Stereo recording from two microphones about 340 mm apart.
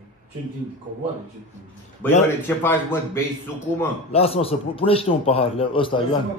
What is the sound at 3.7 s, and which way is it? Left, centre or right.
A man's voice, centre.